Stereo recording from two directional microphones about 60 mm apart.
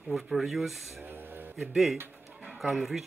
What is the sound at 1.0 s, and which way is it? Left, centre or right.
Music, right.